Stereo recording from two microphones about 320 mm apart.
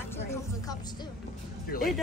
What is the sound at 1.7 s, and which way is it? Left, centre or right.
Speech, left.